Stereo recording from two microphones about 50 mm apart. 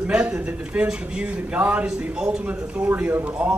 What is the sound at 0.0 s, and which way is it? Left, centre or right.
A man's voice, right.